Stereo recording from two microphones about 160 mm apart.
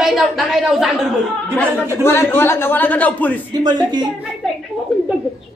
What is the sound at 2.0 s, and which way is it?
A man's voice, 15° left (ahead or behind).